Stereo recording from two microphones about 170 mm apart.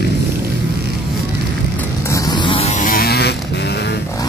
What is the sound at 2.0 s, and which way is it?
Buzz, 20° left (ahead or behind).